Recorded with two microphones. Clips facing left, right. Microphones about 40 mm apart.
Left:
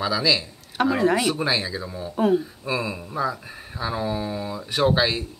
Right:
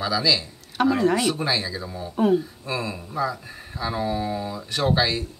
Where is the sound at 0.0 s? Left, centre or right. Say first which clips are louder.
Left 1 dB; centre.